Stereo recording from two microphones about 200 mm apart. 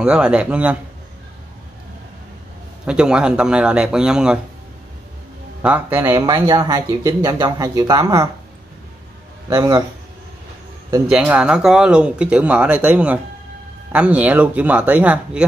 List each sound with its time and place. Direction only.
0.0 s speech: 5° right (ahead or behind)
2.8 s speech: 5° right (ahead or behind)
5.6 s speech: 10° right (ahead or behind)
9.5 s speech: 20° right (ahead or behind)
11.1 s speech: 5° right (ahead or behind)